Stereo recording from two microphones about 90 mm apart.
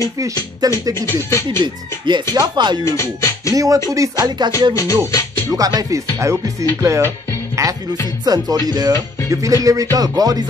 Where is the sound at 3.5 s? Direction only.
40° right (ahead or behind).